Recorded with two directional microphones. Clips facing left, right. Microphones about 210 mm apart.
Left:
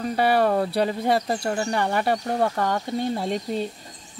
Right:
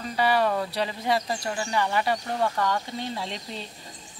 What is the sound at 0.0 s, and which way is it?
Speech, 50° left (ahead or behind).